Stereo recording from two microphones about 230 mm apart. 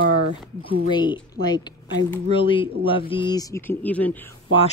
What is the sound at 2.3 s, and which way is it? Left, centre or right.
A woman's voice, left.